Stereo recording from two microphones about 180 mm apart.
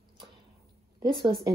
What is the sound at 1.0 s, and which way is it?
Speech, 25° right (ahead or behind).